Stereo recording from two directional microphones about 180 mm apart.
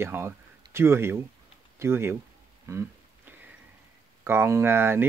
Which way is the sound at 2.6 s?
15° right (ahead or behind).